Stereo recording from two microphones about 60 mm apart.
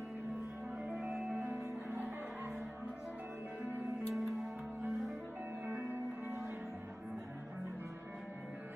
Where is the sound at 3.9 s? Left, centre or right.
Centre.